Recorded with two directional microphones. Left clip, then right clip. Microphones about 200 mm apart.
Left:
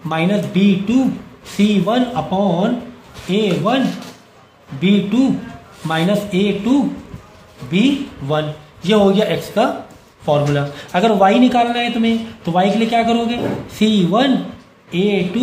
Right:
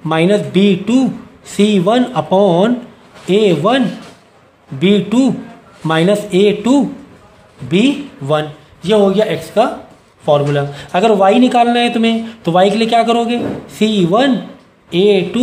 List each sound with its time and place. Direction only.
0.1 s speech: 35° right (ahead or behind)
8.8 s a man's voice: 20° right (ahead or behind)